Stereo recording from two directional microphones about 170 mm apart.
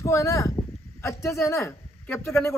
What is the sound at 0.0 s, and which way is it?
A man's voice, 15° left (ahead or behind).